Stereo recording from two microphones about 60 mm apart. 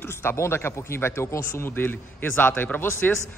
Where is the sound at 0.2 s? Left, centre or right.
Left.